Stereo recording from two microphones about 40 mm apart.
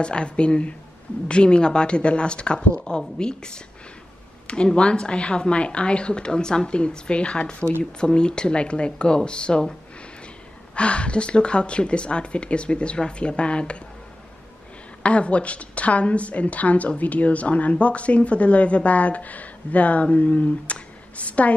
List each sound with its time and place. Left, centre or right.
0.0 s speech: left
15.0 s a woman's voice: left